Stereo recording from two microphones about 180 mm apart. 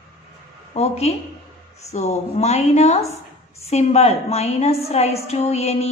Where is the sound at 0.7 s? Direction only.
35° left (ahead or behind).